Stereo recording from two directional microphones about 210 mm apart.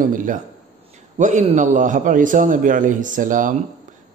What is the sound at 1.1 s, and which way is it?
A man's voice, 35° right (ahead or behind).